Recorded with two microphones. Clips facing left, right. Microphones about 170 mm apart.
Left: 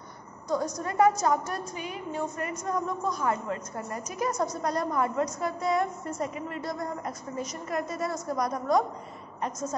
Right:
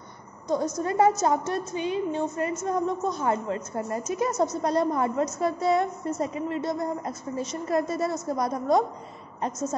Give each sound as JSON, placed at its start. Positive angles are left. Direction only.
{"t": 0.7, "sound": "a woman's voice", "side_deg": -25}